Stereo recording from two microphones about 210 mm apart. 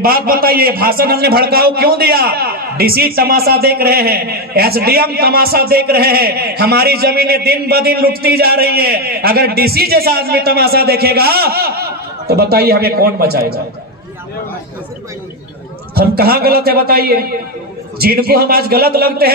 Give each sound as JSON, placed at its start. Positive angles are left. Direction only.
{"t": 0.0, "sound": "a man's voice", "side_deg": -45}
{"t": 15.9, "sound": "a man's voice", "side_deg": -45}